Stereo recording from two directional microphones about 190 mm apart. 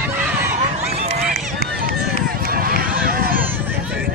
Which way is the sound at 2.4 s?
50° right (ahead or behind).